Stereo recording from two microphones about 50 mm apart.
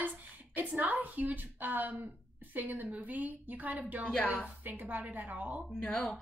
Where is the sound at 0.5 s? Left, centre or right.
Right.